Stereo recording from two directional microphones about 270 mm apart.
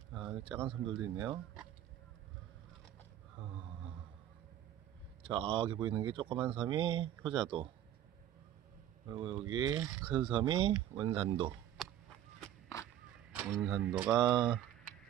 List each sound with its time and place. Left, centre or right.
0.1 s speech: centre
5.2 s speech: centre
9.3 s speech: centre
12.4 s a sound: centre
12.8 s speech: centre